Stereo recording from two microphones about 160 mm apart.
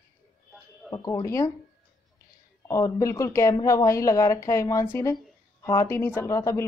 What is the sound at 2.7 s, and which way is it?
Speech, 20° left (ahead or behind).